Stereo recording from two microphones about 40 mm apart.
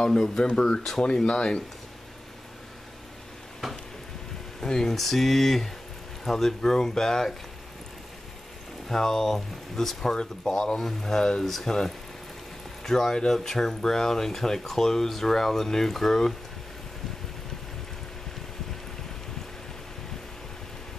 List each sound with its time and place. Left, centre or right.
0.0 s speech: centre
4.6 s speech: centre
4.9 s speech: centre
8.8 s speech: centre